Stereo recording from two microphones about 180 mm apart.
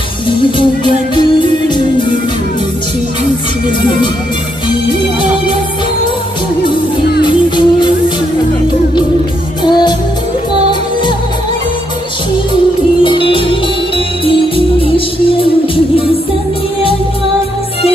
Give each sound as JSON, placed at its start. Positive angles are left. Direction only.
{"t": 0.6, "sound": "music", "side_deg": 25}
{"t": 7.2, "sound": "music", "side_deg": 25}
{"t": 9.7, "sound": "music", "side_deg": 25}
{"t": 14.8, "sound": "music", "side_deg": 30}